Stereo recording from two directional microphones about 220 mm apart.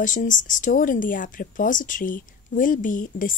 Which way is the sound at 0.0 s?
35° left (ahead or behind).